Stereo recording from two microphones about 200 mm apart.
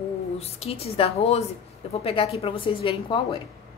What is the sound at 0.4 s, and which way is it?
A woman's voice, 30° left (ahead or behind).